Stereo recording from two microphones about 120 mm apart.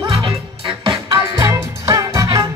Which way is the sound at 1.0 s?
30° right (ahead or behind).